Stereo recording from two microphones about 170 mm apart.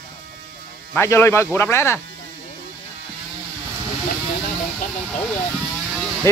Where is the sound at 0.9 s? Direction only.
15° left (ahead or behind).